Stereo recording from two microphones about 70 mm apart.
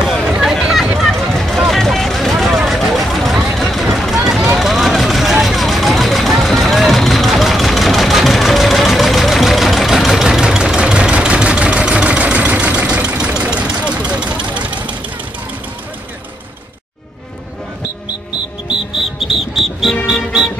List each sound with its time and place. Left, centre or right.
0.3 s a sound: centre
1.7 s vehicle: centre
13.2 s engine: centre
19.2 s music: centre